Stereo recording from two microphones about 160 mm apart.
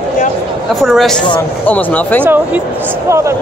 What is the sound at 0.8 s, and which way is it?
Speech, centre (ahead or behind).